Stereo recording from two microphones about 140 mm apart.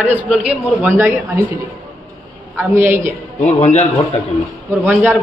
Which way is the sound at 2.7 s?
15° right (ahead or behind).